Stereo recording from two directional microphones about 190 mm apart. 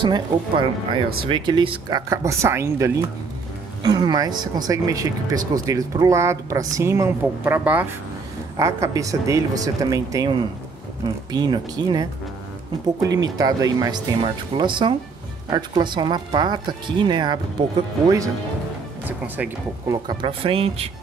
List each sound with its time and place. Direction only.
0.0 s speech: 25° right (ahead or behind)
11.3 s speech: 20° right (ahead or behind)
13.4 s speech: 20° right (ahead or behind)
19.0 s speech: 10° right (ahead or behind)
20.1 s speech: 25° right (ahead or behind)